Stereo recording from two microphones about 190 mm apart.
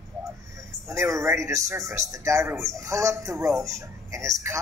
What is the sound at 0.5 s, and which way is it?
Speech, 15° right (ahead or behind).